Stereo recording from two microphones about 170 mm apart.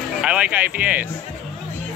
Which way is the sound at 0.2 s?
5° right (ahead or behind).